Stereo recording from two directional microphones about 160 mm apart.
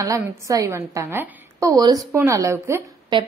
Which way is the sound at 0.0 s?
20° right (ahead or behind).